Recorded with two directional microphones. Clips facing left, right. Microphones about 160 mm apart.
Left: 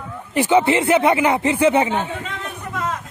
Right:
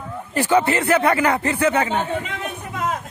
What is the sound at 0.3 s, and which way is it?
Speech, 20° left (ahead or behind).